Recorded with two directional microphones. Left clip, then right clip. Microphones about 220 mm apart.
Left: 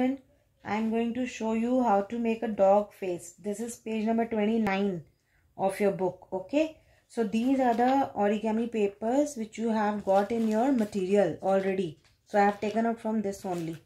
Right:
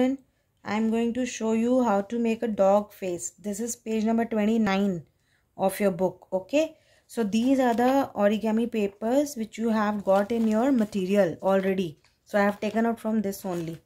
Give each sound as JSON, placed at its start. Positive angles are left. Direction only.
{"t": 0.6, "sound": "speech", "side_deg": -55}